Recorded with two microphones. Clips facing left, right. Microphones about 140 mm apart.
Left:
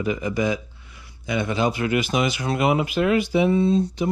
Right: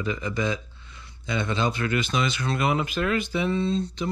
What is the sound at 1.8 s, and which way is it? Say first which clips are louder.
Speech: left 4 dB; 30° left (ahead or behind).